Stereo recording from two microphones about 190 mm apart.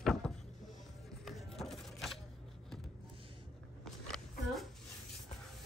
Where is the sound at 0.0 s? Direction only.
5° left (ahead or behind).